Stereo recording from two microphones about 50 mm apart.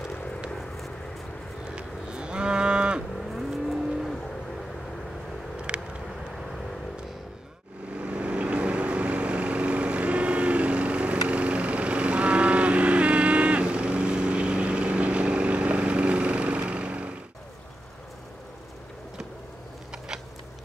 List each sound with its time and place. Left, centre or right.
0.1 s a sound: left
0.6 s a sound: centre
1.6 s cattle: centre
3.2 s vehicle: centre
5.7 s vehicle: right
8.0 s vehicle: right